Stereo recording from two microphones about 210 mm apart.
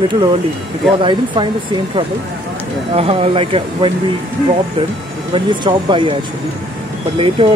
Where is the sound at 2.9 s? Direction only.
30° right (ahead or behind).